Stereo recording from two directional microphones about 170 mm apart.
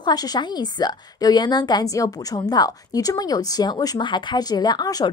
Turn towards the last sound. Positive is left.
turn(degrees=25)  # may be behind; listen again after turning